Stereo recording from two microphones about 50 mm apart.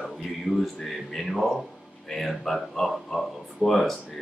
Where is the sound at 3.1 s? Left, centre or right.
Centre.